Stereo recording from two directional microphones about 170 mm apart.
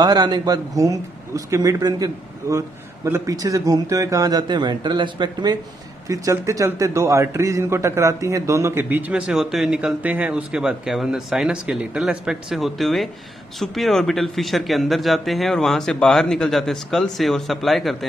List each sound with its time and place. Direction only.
0.0 s speech: 25° right (ahead or behind)
3.1 s a man's voice: 20° right (ahead or behind); by 17.9 s centre (ahead or behind)